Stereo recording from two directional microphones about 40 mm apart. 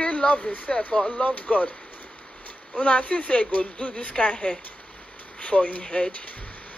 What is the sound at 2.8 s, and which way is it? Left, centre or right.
Speech, left.